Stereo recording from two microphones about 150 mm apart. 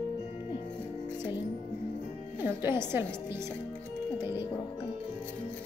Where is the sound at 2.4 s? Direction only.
15° right (ahead or behind).